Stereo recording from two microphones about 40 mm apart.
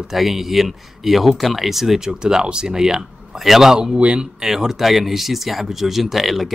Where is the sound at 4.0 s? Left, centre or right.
Right.